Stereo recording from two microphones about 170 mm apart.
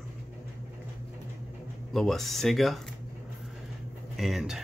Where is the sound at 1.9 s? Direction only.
Centre (ahead or behind).